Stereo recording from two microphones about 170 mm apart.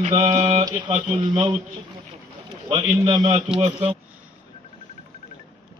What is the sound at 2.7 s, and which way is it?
A man's voice, 25° right (ahead or behind).